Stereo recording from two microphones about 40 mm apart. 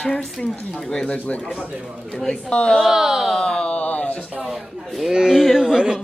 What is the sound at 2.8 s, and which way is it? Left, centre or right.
Speech, centre.